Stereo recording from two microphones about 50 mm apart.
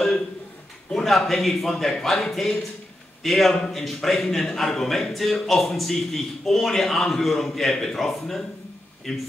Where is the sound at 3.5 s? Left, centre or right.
Centre.